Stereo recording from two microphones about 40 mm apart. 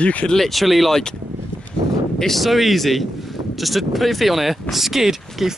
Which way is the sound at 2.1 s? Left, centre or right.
Centre.